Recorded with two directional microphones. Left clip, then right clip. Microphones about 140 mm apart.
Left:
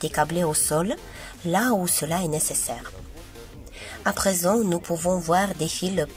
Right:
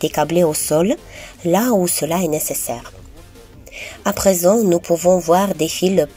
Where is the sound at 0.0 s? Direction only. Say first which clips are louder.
Right 8 dB; 15° right (ahead or behind).